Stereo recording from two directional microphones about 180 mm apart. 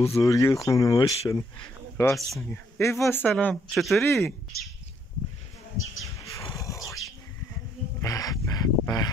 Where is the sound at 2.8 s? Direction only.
15° left (ahead or behind).